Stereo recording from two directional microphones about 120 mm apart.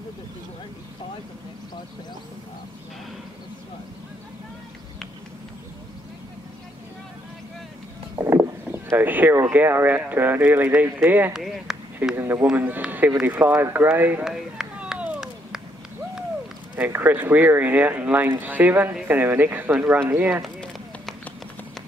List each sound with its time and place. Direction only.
8.2 s speech: 20° right (ahead or behind)
11.3 s speech: 5° right (ahead or behind)
12.2 s speech: 20° right (ahead or behind)
14.2 s a sound: 5° right (ahead or behind)
16.7 s speech: 15° right (ahead or behind)
20.4 s a sound: 5° left (ahead or behind)